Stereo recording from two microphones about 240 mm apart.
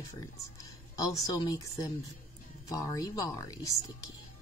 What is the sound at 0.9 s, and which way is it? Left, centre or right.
Speech, centre.